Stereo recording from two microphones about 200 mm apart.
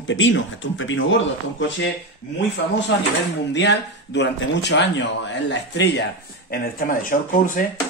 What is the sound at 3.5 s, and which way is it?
Speech, 60° left (ahead or behind).